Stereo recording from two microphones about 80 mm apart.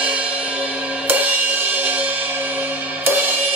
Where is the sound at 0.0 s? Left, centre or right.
Centre.